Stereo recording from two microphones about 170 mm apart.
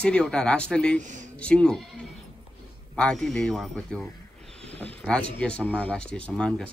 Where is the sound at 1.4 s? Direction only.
5° left (ahead or behind).